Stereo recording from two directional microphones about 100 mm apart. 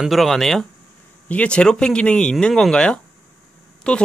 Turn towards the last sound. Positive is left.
turn(degrees=10)  # may be behind; listen again after turning